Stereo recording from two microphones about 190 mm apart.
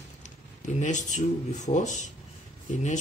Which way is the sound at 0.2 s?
40° left (ahead or behind).